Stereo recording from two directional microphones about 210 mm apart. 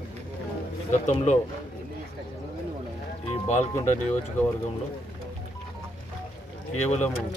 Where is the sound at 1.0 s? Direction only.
35° left (ahead or behind).